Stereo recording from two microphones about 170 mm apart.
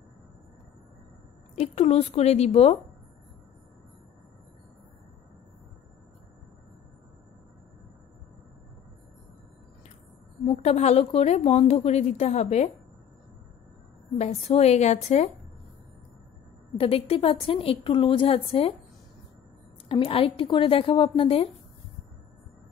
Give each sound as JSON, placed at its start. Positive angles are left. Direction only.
{"t": 1.5, "sound": "speech", "side_deg": 40}
{"t": 10.4, "sound": "speech", "side_deg": 35}
{"t": 14.1, "sound": "speech", "side_deg": 40}
{"t": 16.7, "sound": "speech", "side_deg": 35}
{"t": 19.9, "sound": "speech", "side_deg": 35}